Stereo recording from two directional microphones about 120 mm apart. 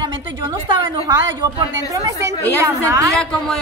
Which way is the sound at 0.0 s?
35° right (ahead or behind).